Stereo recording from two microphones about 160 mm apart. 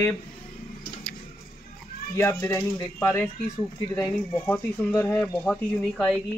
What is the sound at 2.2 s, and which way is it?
Speech, 20° left (ahead or behind).